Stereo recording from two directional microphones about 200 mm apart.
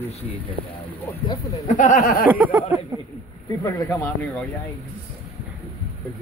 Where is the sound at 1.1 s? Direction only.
10° left (ahead or behind).